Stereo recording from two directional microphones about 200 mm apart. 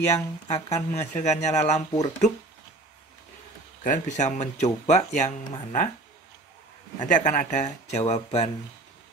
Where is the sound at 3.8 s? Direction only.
40° left (ahead or behind).